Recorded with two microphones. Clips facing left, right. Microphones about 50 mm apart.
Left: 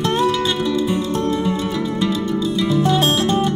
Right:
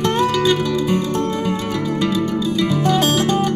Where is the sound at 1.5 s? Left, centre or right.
Right.